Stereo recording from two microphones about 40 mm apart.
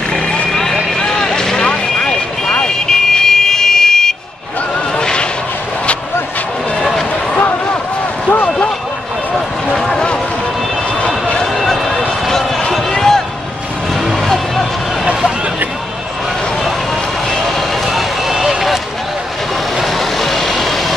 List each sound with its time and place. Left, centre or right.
0.1 s vehicle: centre; by 2.6 s left
2.6 s vehicle: centre
5.0 s vehicle: left
8.3 s basketball bounce: left
9.8 s vehicle: centre
11.0 s a sound: left
11.4 s basketball bounce: centre
12.7 s a sound: centre
13.9 s music: centre
17.3 s vehicle: centre
19.8 s vehicle: centre